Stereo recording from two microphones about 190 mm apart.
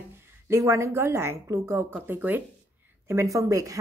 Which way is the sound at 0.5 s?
15° right (ahead or behind).